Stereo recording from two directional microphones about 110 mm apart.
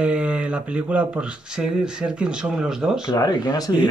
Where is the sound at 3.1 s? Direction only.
35° left (ahead or behind).